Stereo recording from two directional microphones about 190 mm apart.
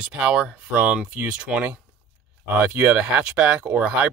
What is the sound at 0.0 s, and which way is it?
Speech, 5° right (ahead or behind).